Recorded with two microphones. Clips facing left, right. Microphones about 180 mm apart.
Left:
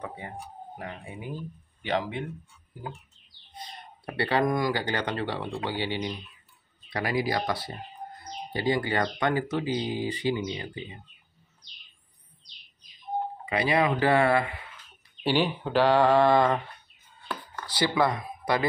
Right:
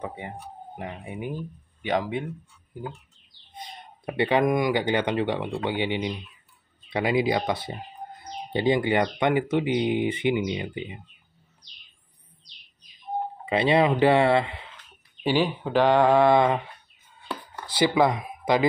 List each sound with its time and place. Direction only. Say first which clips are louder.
0.7 s speech: right 5 dB; 20° right (ahead or behind)
1.8 s mantra: right 3 dB; 15° right (ahead or behind)
4.0 s speech: right 4 dB; 20° right (ahead or behind)
13.5 s speech: right 4 dB; 25° right (ahead or behind)
15.2 s speech: right 2 dB; centre (ahead or behind)
16.1 s mantra: right 2 dB; 15° right (ahead or behind)
17.3 s chopping: right 1 dB; 20° right (ahead or behind)